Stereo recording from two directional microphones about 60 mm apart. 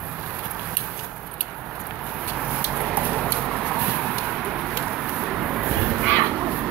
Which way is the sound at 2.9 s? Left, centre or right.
Right.